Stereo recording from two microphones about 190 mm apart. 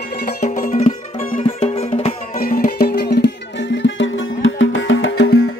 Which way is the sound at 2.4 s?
50° left (ahead or behind).